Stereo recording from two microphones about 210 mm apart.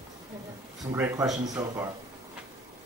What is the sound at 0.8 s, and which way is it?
Speech, 15° right (ahead or behind).